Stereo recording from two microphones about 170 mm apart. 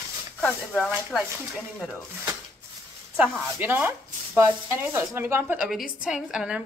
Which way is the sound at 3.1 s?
10° right (ahead or behind).